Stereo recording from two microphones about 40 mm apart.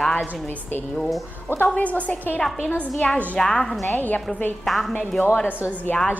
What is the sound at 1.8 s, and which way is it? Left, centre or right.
Speech, left.